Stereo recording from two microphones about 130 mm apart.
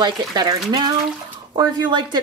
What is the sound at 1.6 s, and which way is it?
Speech, 35° right (ahead or behind).